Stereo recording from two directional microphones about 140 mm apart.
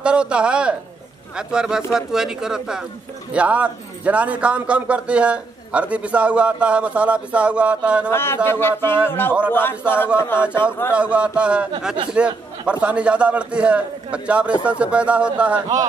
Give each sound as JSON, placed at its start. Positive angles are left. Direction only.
{"t": 0.0, "sound": "a sound", "side_deg": -5}
{"t": 1.3, "sound": "speech", "side_deg": -5}
{"t": 8.1, "sound": "speech", "side_deg": 15}
{"t": 11.0, "sound": "speech", "side_deg": -10}